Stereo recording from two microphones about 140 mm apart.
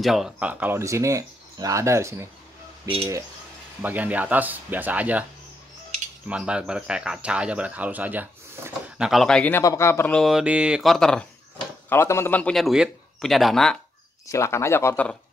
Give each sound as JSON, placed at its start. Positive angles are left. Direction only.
{"t": 0.0, "sound": "speech", "side_deg": 0}
{"t": 3.8, "sound": "speech", "side_deg": -10}
{"t": 6.2, "sound": "speech", "side_deg": -5}
{"t": 9.6, "sound": "speech", "side_deg": 20}
{"t": 10.1, "sound": "a man's voice", "side_deg": 0}
{"t": 11.9, "sound": "a man's voice", "side_deg": 20}
{"t": 14.2, "sound": "speech", "side_deg": 20}